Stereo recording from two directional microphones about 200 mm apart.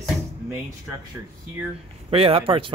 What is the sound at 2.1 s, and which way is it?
Speech, 30° right (ahead or behind).